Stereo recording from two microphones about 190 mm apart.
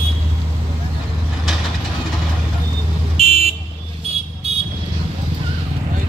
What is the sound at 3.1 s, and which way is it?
Vehicle, 35° right (ahead or behind).